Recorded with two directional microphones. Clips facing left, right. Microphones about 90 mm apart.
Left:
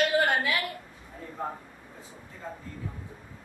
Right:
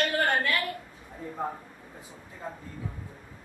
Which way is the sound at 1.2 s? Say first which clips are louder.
Right 4 dB; 20° right (ahead or behind).